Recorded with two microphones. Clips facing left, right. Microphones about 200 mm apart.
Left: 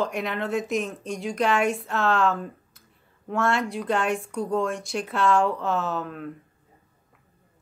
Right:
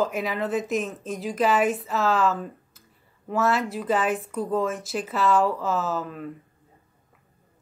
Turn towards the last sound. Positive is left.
turn(degrees=0)  # may be behind; listen again after turning